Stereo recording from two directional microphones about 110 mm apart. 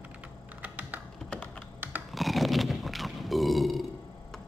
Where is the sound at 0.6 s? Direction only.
15° right (ahead or behind).